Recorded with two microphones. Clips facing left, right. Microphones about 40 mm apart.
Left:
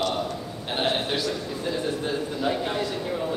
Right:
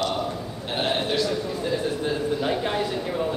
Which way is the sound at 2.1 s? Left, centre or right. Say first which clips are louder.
Right 3 dB; centre.